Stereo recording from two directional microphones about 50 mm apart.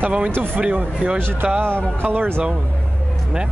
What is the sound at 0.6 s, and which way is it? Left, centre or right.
Speech, right.